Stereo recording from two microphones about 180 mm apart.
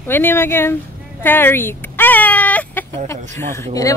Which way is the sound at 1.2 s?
10° left (ahead or behind).